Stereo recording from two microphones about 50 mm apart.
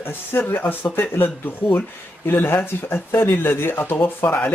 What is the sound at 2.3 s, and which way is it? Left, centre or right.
Speech, left.